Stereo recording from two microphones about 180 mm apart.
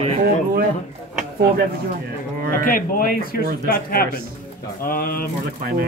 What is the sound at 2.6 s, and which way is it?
Speech, 50° left (ahead or behind).